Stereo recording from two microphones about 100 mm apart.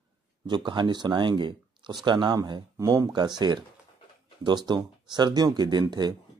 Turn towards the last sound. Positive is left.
turn(degrees=-45)  # may be behind; listen again after turning